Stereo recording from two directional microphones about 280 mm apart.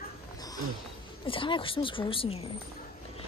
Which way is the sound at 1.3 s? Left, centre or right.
Centre.